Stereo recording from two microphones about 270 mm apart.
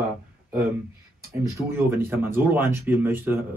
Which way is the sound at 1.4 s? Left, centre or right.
Centre.